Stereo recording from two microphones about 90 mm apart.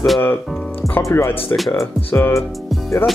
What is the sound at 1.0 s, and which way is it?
Speech, 30° left (ahead or behind).